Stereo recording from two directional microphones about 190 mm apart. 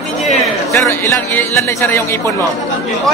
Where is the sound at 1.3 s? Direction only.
15° left (ahead or behind).